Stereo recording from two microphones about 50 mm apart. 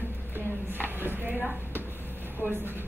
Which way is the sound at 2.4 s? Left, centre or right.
Right.